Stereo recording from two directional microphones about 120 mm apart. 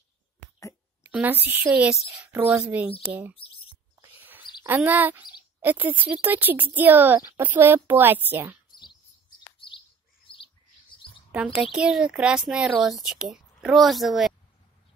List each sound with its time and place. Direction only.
1.0 s speech: 15° right (ahead or behind)
1.9 s speech: 5° right (ahead or behind)
2.2 s speech: 15° right (ahead or behind)
3.3 s speech: 50° left (ahead or behind)
4.0 s a sound: 15° right (ahead or behind)
4.6 s speech: 15° right (ahead or behind)
8.6 s chirp: 35° left (ahead or behind)
11.7 s speech: 5° right (ahead or behind)